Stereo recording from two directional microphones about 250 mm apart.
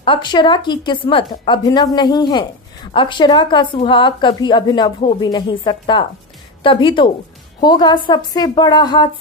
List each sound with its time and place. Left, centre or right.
0.0 s a woman's voice: centre